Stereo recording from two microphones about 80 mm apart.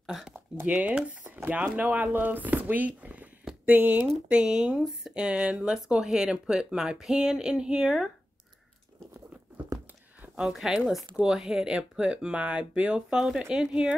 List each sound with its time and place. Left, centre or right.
0.0 s a sound: centre
0.7 s speech: centre
10.4 s speech: centre